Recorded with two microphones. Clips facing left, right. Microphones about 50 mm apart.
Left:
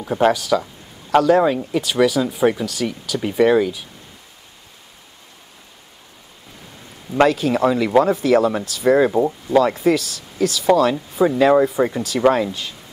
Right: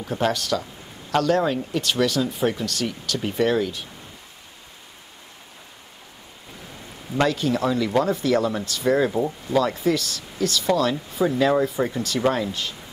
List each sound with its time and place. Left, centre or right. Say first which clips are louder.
0.0 s speech: left 7 dB; centre
7.2 s speech: left 5 dB; centre
9.1 s speech: left 6 dB; centre
9.6 s speech: left 5 dB; centre